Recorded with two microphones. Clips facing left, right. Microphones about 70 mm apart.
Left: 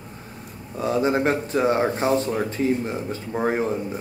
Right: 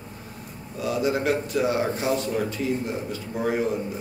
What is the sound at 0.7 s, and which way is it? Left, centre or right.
Speech, left.